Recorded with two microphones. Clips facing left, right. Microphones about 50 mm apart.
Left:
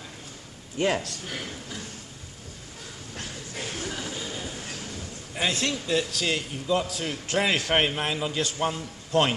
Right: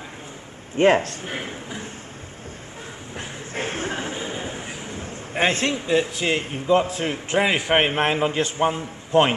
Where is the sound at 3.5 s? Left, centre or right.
Right.